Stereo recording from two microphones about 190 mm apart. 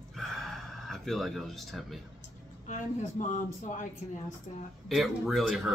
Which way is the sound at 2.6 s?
40° left (ahead or behind).